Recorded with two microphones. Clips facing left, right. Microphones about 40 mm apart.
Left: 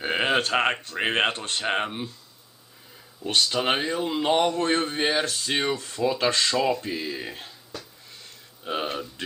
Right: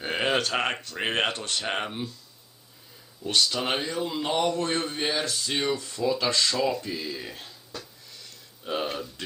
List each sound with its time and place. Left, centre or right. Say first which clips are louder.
0.0 s speech: left 2 dB; centre
3.3 s a man's voice: left 2 dB; left
6.5 s a man's voice: left 3 dB; left
8.1 s a sound: left 1 dB; left
8.7 s speech: left 1 dB; centre